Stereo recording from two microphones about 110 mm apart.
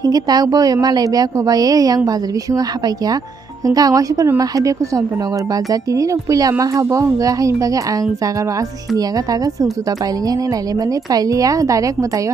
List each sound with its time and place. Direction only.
0.0 s a woman's voice: 35° right (ahead or behind)
11.1 s a woman's voice: 35° right (ahead or behind)